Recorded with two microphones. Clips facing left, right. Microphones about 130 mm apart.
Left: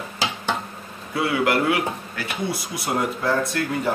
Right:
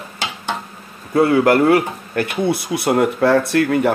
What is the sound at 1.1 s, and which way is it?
Speech, 45° right (ahead or behind).